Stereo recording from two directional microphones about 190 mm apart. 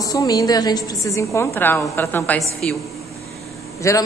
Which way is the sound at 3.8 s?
15° left (ahead or behind).